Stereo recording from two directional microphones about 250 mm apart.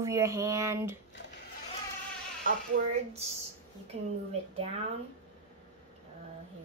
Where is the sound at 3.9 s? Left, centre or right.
Right.